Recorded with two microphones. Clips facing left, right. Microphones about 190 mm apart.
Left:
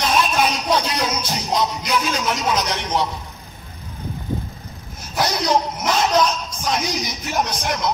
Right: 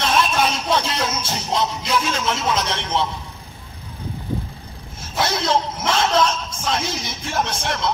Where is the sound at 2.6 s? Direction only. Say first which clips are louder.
Left 1 dB; 10° left (ahead or behind).